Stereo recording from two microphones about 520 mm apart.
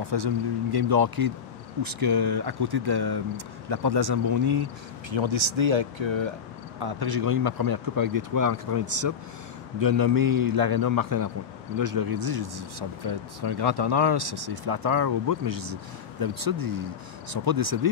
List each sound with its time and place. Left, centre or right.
0.1 s speech: right
5.1 s speech: right
6.8 s a man's voice: right